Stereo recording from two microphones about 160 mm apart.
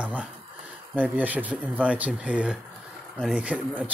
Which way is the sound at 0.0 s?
10° right (ahead or behind).